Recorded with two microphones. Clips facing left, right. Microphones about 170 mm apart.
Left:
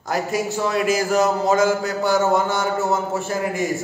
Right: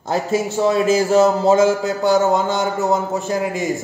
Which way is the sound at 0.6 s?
25° right (ahead or behind).